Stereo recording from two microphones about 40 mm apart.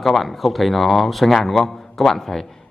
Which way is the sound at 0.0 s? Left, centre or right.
Centre.